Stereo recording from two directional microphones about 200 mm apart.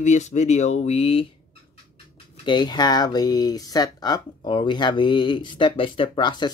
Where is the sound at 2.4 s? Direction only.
20° left (ahead or behind).